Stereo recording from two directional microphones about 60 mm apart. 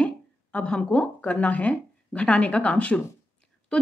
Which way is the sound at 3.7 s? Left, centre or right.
Centre.